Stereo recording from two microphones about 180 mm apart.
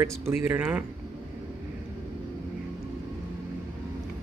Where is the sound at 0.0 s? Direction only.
15° right (ahead or behind).